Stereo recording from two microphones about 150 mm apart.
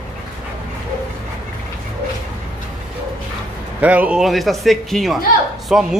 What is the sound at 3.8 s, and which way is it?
Speech, 10° right (ahead or behind).